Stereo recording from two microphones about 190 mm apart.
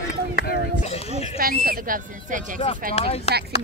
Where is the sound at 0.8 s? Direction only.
35° left (ahead or behind).